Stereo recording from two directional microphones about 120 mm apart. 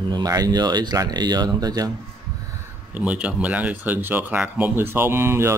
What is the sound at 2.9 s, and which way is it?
Speech, 10° right (ahead or behind).